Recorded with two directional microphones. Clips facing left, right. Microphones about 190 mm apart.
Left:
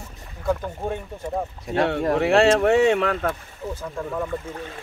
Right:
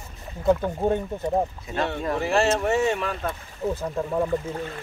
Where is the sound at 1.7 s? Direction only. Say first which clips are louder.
Left 5 dB; 65° left (ahead or behind).